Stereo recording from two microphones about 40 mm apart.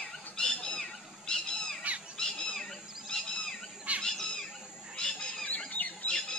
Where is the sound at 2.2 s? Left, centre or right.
Centre.